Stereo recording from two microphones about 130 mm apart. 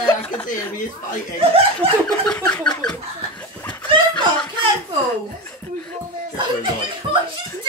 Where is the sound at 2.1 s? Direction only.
5° left (ahead or behind).